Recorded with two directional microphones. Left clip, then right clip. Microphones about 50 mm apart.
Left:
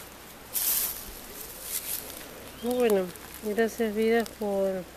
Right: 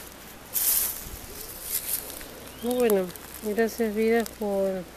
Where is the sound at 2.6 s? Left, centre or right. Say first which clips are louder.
Right 1 dB; centre.